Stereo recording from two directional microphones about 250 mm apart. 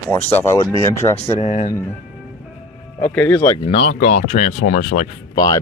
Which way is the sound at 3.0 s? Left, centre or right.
Centre.